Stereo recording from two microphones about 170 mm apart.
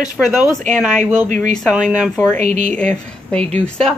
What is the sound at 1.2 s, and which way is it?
Speech, 50° right (ahead or behind).